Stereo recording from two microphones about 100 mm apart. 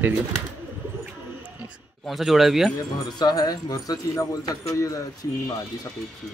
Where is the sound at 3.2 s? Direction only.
40° left (ahead or behind).